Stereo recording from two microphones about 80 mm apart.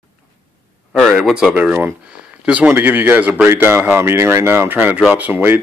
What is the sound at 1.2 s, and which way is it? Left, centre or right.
Speech, centre.